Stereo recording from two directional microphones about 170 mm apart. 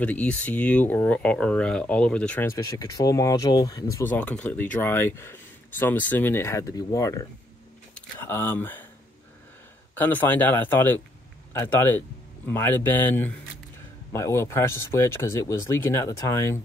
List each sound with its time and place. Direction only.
0.0 s speech: 10° left (ahead or behind)
9.9 s speech: 10° left (ahead or behind)